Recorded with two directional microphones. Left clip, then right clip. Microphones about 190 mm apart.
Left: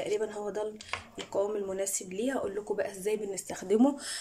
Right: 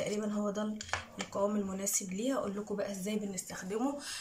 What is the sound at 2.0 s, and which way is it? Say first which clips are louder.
Speech: left 2 dB; 60° left (ahead or behind).